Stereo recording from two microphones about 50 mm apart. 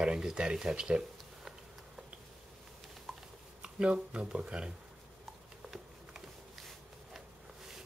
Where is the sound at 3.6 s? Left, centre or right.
Centre.